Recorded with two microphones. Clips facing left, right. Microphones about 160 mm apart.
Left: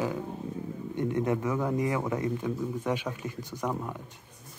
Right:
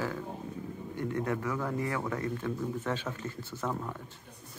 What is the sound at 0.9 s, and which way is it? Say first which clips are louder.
Speech: left 4 dB; 20° left (ahead or behind).